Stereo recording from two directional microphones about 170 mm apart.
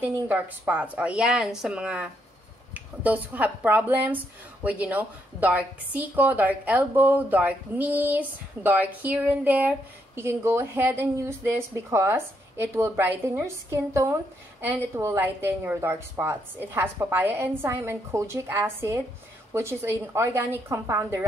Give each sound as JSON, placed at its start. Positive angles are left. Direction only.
{"t": 0.1, "sound": "speech", "side_deg": -10}